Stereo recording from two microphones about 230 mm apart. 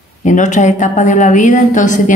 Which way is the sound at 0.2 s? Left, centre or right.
Left.